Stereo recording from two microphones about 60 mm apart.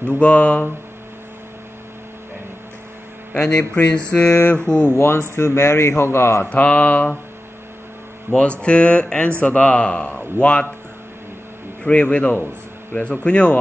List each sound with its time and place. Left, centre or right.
0.0 s speech: left
3.3 s speech: centre
4.3 s speech: left
4.6 s speech: centre
4.9 s a man's voice: left
6.5 s speech: left
8.3 s speech: centre
11.8 s speech: centre